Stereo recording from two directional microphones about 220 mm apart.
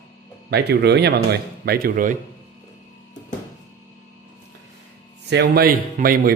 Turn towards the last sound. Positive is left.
turn(degrees=-40)  # may be behind; listen again after turning